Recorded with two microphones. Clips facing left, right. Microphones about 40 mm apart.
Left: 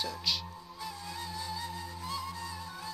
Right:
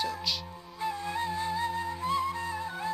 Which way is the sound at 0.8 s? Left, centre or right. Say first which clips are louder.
Right 10 dB; right.